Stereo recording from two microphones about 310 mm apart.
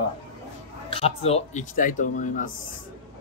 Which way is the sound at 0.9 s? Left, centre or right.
Centre.